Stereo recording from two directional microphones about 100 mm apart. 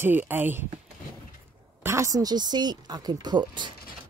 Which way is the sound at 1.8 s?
30° right (ahead or behind).